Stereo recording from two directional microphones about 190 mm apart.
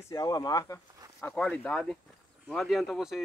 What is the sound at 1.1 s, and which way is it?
Speech, 5° left (ahead or behind).